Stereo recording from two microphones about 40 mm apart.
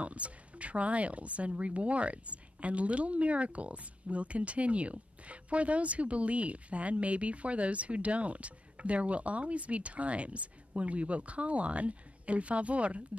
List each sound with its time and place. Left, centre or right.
0.0 s speech: right